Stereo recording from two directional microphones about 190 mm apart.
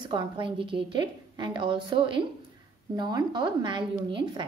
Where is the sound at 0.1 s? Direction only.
25° right (ahead or behind).